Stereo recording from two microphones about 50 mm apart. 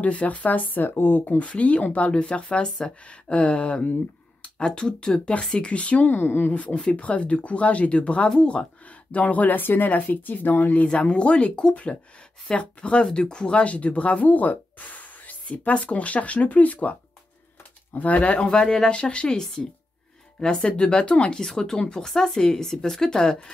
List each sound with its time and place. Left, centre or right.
0.0 s speech: left
1.2 s speech: left
6.0 s speech: left
6.5 s speech: left
10.9 s speech: left
17.9 s speech: left; by 23.5 s centre